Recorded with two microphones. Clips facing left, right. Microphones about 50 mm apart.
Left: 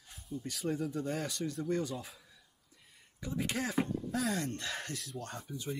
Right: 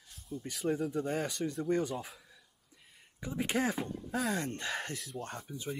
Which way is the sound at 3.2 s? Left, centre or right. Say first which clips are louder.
Right 3 dB; right.